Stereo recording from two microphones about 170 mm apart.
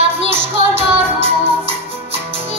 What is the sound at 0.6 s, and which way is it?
Music, 35° right (ahead or behind).